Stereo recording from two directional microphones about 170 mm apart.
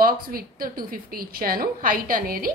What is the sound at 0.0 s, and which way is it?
A woman's voice, 60° right (ahead or behind).